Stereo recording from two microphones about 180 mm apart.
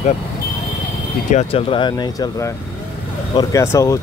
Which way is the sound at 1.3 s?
35° left (ahead or behind).